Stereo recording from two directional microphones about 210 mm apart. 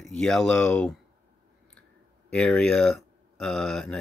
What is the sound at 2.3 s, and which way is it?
Speech, 5° left (ahead or behind).